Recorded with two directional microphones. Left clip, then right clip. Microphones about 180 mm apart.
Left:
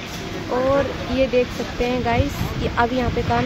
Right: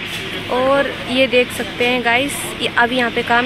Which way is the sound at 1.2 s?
5° left (ahead or behind).